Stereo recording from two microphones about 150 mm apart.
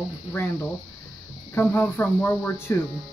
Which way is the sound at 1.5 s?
15° left (ahead or behind).